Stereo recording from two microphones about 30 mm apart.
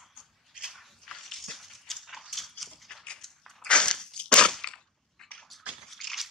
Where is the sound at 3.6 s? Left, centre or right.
Left.